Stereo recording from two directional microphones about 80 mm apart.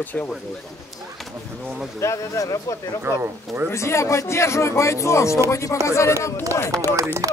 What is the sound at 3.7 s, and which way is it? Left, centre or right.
Speech, left.